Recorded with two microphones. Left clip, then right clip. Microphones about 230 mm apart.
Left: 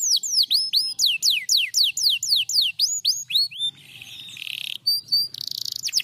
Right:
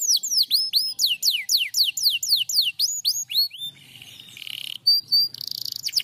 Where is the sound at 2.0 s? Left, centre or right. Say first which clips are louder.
Left 1 dB; centre.